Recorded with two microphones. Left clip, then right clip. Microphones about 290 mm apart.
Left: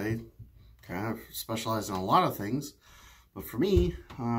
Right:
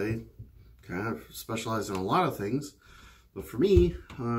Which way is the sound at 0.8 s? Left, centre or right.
Centre.